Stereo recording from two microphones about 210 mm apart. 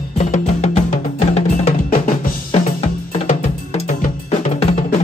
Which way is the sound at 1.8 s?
40° left (ahead or behind).